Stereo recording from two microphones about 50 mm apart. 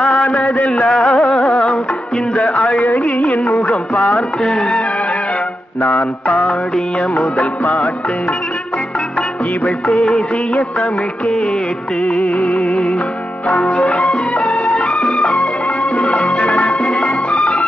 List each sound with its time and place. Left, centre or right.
0.0 s a sound: left
0.8 s music: centre
1.5 s music: centre
2.3 s a sound: left
3.6 s music: left
4.1 s music: centre
7.3 s music: left
10.0 s music of bollywood: centre
12.1 s music: left
13.7 s music: left